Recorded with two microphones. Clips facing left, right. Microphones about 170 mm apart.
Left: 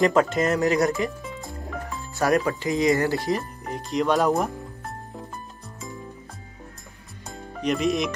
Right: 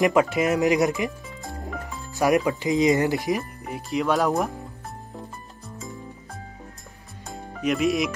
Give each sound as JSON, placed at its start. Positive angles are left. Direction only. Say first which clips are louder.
{"t": 0.0, "sound": "speech", "louder": "even", "side_deg": -10}
{"t": 0.6, "sound": "speech", "louder": "right 1 dB", "side_deg": -20}
{"t": 2.1, "sound": "speech", "louder": "right 1 dB", "side_deg": -15}
{"t": 7.6, "sound": "speech", "louder": "right 1 dB", "side_deg": -5}